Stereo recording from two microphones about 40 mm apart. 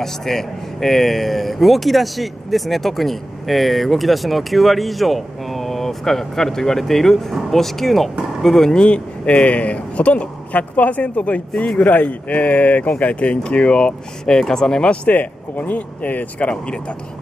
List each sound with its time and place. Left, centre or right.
0.0 s speech: centre
8.7 s speech: left
11.8 s speech: left
15.0 s speech: left